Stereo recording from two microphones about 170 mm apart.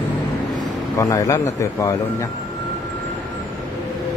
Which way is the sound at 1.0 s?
20° left (ahead or behind).